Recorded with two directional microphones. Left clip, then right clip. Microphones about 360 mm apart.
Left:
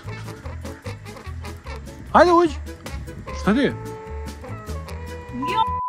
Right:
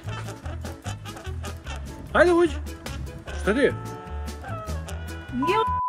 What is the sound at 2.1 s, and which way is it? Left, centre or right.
Speech, centre.